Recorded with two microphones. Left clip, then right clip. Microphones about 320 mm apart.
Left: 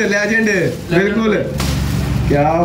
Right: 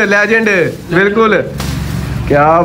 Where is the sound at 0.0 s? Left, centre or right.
Centre.